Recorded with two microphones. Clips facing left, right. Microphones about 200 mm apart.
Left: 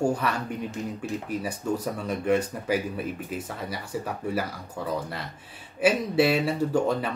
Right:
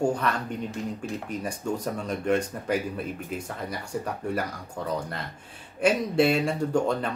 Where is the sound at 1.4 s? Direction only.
5° left (ahead or behind).